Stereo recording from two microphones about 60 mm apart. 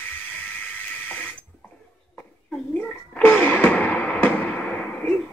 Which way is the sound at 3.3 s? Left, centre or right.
Left.